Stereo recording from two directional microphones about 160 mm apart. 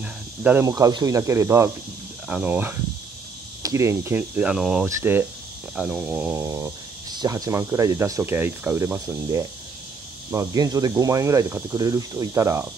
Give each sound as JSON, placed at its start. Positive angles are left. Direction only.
{"t": 0.0, "sound": "cricket", "side_deg": -10}
{"t": 0.7, "sound": "speech", "side_deg": -20}
{"t": 4.8, "sound": "speech", "side_deg": -15}
{"t": 5.8, "sound": "speech", "side_deg": -5}
{"t": 6.4, "sound": "speech", "side_deg": -20}